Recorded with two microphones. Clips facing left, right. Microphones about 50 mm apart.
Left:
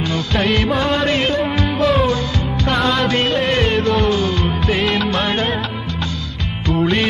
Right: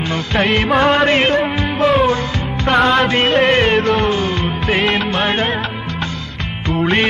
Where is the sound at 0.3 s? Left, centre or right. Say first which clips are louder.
Right 3 dB; right.